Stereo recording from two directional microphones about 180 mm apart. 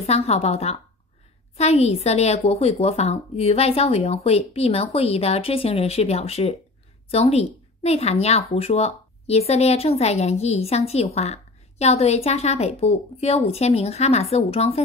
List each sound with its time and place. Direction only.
0.0 s a woman's voice: 35° left (ahead or behind)